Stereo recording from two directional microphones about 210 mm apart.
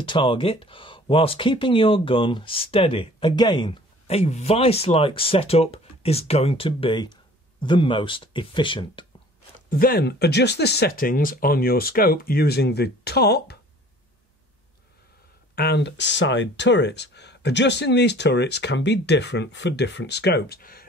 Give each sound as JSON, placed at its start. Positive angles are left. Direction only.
{"t": 0.0, "sound": "speech", "side_deg": 25}
{"t": 9.7, "sound": "speech", "side_deg": 45}
{"t": 15.5, "sound": "speech", "side_deg": 50}